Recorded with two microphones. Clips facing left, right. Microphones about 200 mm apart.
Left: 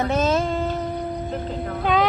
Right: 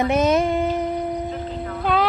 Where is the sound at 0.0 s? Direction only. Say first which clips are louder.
Right 3 dB; 15° right (ahead or behind).